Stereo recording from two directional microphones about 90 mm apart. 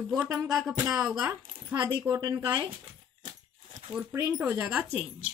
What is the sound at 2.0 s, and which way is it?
Speech, 40° right (ahead or behind).